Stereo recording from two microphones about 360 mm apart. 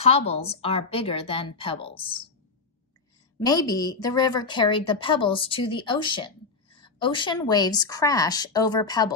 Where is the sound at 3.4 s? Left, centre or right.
Centre.